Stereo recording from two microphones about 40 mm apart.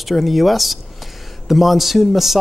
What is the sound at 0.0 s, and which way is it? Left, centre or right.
Speech, centre.